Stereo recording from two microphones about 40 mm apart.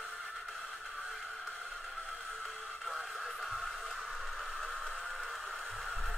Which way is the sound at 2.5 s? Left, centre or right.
Centre.